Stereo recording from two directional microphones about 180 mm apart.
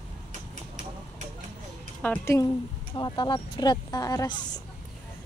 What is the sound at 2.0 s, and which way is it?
Speech, 10° left (ahead or behind).